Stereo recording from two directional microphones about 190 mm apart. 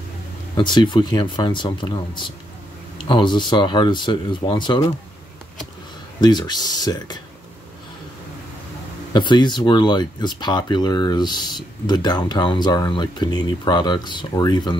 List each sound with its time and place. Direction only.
0.6 s speech: 25° left (ahead or behind)
6.2 s speech: 20° left (ahead or behind)
9.1 s speech: 25° left (ahead or behind)